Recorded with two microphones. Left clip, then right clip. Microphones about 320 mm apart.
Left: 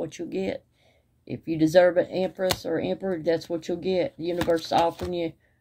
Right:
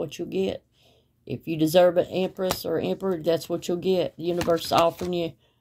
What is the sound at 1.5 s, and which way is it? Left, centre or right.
Speech, right.